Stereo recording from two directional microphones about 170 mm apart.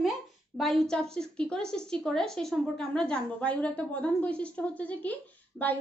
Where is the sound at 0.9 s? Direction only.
5° left (ahead or behind).